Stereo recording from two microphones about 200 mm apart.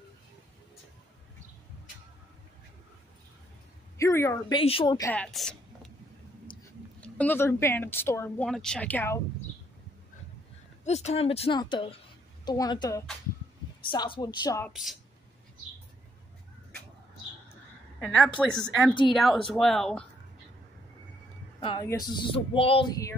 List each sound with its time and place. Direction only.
4.0 s speech: 15° left (ahead or behind)
4.6 s speech: 25° left (ahead or behind)
5.1 s a woman's voice: 5° left (ahead or behind)
7.0 s speech: 5° left (ahead or behind)
10.8 s speech: 35° left (ahead or behind)
14.7 s speech: centre (ahead or behind)
17.9 s a woman's voice: centre (ahead or behind)
21.5 s speech: 25° left (ahead or behind)